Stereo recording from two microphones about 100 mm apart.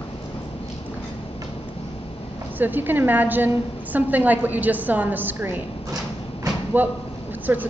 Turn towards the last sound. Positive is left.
turn(degrees=-20)  # may be behind; listen again after turning